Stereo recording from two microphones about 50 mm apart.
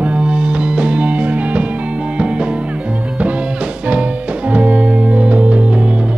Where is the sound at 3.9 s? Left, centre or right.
Right.